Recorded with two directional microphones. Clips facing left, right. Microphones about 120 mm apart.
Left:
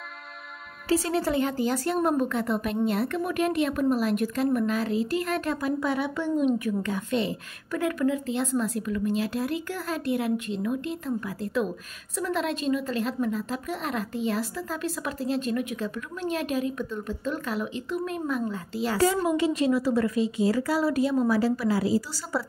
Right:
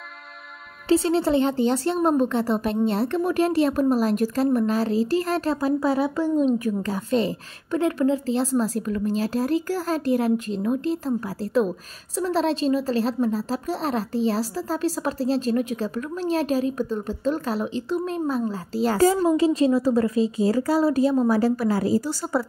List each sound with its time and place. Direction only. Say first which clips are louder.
0.8 s a woman's voice: right 5 dB; 25° right (ahead or behind); by 22.4 s 45° right (ahead or behind)